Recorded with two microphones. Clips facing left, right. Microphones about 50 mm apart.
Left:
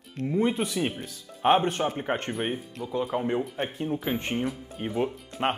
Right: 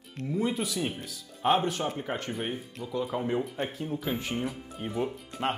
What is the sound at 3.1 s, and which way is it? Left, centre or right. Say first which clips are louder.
Speech: left 1 dB; left.